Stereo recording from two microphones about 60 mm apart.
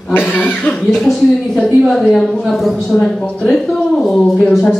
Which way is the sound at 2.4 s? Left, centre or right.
Centre.